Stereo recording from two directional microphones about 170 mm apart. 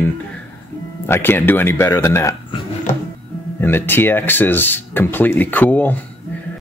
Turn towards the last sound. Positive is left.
turn(degrees=10)  # may be behind; listen again after turning